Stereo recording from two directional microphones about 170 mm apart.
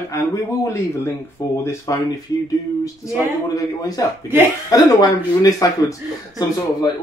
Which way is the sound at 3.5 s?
20° left (ahead or behind).